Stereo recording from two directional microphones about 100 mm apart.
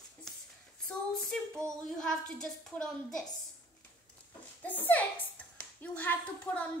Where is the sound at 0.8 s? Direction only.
5° left (ahead or behind).